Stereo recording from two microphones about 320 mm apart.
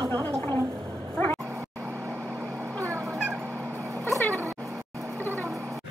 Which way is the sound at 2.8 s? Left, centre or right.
Centre.